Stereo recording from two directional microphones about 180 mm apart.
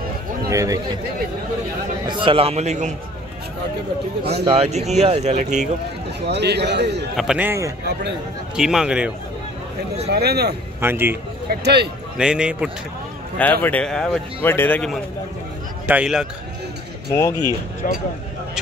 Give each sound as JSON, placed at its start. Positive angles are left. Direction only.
{"t": 0.5, "sound": "speech", "side_deg": -20}
{"t": 2.0, "sound": "speech", "side_deg": -25}
{"t": 4.2, "sound": "speech", "side_deg": -65}
{"t": 4.6, "sound": "speech", "side_deg": -40}
{"t": 6.2, "sound": "a man's voice", "side_deg": -70}
{"t": 7.2, "sound": "a man's voice", "side_deg": -5}
{"t": 10.0, "sound": "speech", "side_deg": -65}
{"t": 10.8, "sound": "a man's voice", "side_deg": -10}
{"t": 11.6, "sound": "a man's voice", "side_deg": -65}
{"t": 12.2, "sound": "a man's voice", "side_deg": -5}
{"t": 13.4, "sound": "speech", "side_deg": 10}
{"t": 15.9, "sound": "a man's voice", "side_deg": -5}
{"t": 17.8, "sound": "speech", "side_deg": 50}